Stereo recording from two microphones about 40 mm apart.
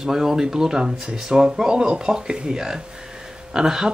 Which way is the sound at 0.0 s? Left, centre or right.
Centre.